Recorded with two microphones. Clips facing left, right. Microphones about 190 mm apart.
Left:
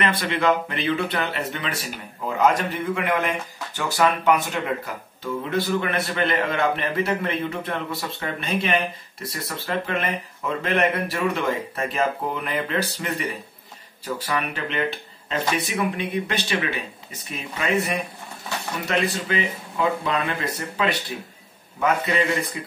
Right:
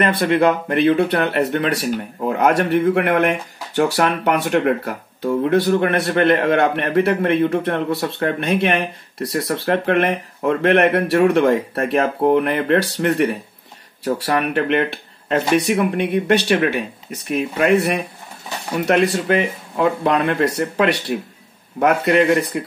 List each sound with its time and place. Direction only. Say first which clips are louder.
0.0 s a man's voice: right 7 dB; 55° right (ahead or behind)